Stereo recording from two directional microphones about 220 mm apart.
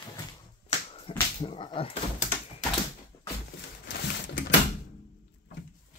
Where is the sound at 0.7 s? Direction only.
25° left (ahead or behind).